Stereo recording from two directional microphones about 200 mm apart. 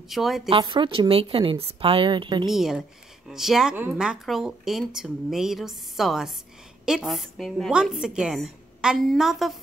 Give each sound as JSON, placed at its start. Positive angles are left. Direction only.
{"t": 0.1, "sound": "speech", "side_deg": 0}
{"t": 0.5, "sound": "a woman's voice", "side_deg": -25}
{"t": 2.4, "sound": "speech", "side_deg": 0}